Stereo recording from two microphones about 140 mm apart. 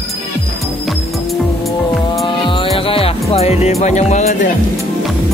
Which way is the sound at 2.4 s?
40° left (ahead or behind).